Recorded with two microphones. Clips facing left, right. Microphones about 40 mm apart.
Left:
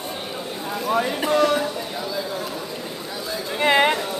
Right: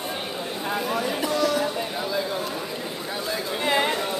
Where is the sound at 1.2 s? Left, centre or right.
Left.